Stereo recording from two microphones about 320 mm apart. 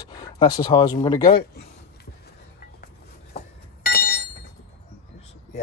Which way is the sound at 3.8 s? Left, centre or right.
Left.